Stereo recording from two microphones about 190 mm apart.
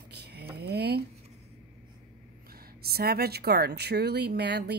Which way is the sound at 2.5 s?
50° right (ahead or behind).